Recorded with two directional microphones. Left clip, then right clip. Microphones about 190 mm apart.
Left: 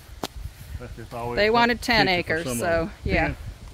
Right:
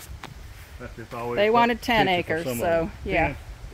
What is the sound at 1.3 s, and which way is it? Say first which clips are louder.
Speech: even; 10° left (ahead or behind).